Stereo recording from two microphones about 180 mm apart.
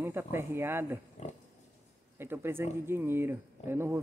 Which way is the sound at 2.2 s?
15° right (ahead or behind).